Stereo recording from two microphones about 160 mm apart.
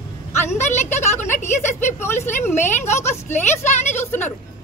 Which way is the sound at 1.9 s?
15° left (ahead or behind).